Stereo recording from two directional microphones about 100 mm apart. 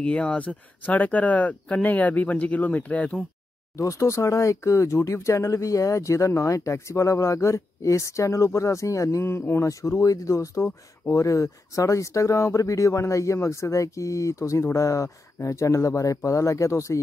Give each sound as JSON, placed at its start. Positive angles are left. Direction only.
{"t": 0.0, "sound": "speech", "side_deg": 10}
{"t": 3.7, "sound": "speech", "side_deg": 30}